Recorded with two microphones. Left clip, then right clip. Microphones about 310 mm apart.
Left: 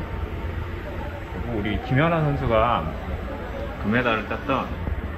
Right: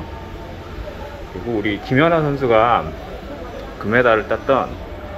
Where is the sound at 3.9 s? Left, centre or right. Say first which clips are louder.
Right 9 dB; centre.